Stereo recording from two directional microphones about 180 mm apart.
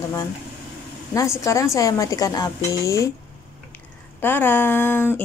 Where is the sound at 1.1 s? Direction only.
15° left (ahead or behind).